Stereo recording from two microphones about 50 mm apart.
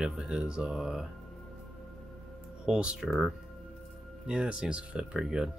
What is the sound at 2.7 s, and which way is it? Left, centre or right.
Speech, centre.